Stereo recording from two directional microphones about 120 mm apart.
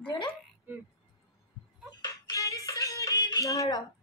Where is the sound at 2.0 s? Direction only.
30° left (ahead or behind).